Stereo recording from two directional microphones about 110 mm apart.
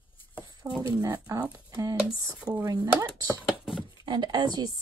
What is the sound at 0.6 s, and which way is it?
A woman's voice, 35° right (ahead or behind).